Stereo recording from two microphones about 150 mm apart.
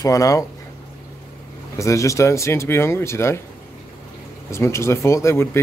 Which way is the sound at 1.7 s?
20° left (ahead or behind).